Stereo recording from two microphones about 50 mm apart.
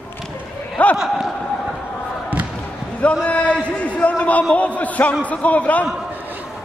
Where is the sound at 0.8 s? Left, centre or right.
Left.